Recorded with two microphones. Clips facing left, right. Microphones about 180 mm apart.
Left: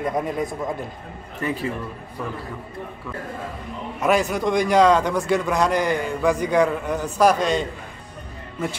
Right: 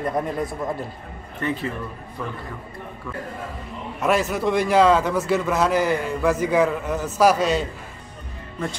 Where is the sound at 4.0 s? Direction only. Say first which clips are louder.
Left 1 dB; centre (ahead or behind).